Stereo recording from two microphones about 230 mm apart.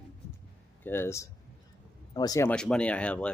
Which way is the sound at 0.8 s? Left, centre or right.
Centre.